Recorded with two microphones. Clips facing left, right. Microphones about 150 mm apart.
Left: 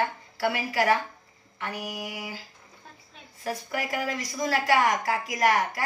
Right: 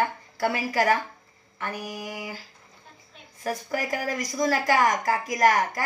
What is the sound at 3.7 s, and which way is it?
A woman's voice, 45° right (ahead or behind).